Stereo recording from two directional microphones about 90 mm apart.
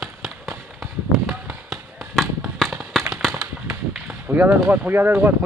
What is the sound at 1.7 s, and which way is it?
Basketball bounce, centre (ahead or behind).